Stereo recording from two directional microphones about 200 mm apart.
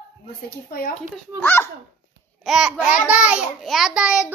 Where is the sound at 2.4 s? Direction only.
5° right (ahead or behind).